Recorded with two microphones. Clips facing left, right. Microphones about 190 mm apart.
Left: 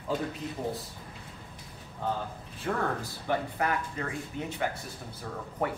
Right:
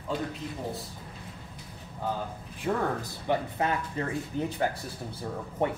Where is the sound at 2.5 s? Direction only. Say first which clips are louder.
Right 2 dB; 20° right (ahead or behind).